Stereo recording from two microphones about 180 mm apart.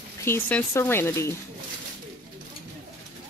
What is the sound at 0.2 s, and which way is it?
Speech, 10° left (ahead or behind).